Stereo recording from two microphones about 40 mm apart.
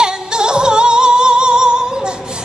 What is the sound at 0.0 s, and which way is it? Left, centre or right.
Music, centre.